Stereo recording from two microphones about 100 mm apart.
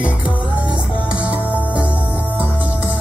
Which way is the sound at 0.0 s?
10° right (ahead or behind).